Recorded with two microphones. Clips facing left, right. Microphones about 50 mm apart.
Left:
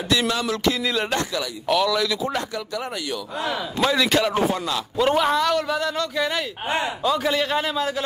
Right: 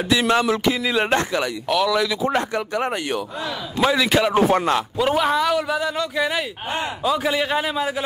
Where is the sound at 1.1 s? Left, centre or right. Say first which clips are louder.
Right 4 dB; right.